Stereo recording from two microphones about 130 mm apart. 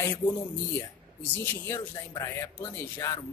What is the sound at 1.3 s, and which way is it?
Speech, 15° left (ahead or behind).